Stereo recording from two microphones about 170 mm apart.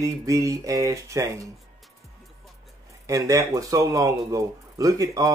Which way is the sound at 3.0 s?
20° right (ahead or behind).